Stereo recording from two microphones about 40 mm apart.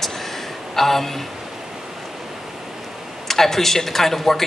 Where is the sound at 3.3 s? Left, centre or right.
Centre.